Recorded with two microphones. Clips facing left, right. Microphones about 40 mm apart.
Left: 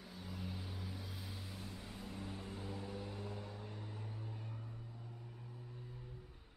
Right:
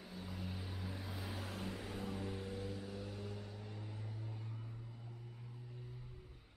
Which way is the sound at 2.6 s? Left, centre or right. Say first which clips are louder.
Even; centre.